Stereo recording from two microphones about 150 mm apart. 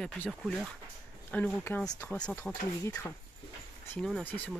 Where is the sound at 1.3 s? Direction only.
10° left (ahead or behind).